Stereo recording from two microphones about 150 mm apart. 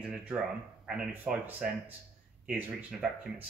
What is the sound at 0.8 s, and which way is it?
Speech, 5° right (ahead or behind).